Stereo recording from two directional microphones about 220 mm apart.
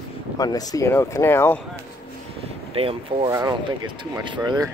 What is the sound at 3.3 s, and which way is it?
Speech, 15° right (ahead or behind).